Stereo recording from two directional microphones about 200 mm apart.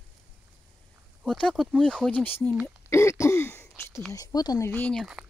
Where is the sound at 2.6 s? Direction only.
15° left (ahead or behind).